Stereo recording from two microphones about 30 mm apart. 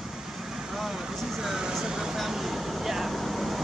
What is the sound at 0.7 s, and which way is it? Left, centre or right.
Speech, centre.